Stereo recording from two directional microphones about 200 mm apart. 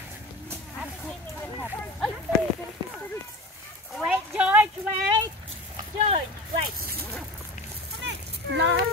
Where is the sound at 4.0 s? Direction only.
5° right (ahead or behind).